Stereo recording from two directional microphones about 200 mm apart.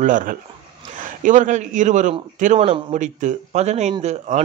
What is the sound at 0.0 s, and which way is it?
A man's voice, 40° right (ahead or behind).